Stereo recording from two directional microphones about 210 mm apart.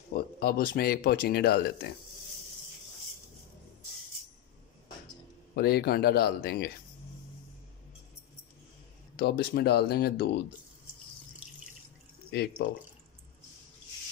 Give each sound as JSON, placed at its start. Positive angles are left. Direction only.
{"t": 0.1, "sound": "speech", "side_deg": 45}
{"t": 5.6, "sound": "speech", "side_deg": 50}
{"t": 9.1, "sound": "speech", "side_deg": 45}